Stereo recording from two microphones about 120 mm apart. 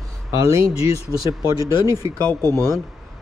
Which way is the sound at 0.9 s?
30° right (ahead or behind).